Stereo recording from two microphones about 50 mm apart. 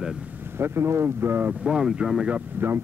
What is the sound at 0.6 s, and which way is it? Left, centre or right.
Speech, right.